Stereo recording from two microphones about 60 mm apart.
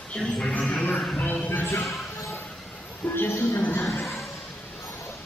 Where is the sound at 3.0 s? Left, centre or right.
Left.